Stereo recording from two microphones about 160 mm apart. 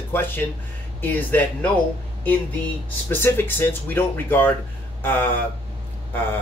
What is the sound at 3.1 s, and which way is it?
Speech, 15° left (ahead or behind).